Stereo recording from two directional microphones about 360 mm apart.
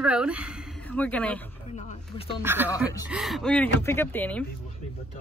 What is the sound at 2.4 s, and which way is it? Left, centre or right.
Speech, centre.